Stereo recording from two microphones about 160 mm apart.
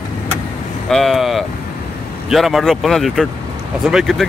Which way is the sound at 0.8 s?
Centre (ahead or behind).